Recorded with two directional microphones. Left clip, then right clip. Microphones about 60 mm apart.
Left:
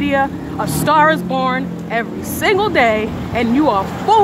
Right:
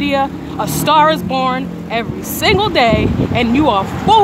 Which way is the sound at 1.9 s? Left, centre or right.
Right.